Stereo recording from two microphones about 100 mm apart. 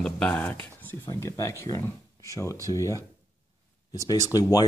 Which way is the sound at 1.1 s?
30° left (ahead or behind).